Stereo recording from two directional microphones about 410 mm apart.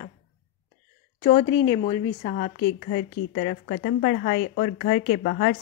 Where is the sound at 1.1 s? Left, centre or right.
Centre.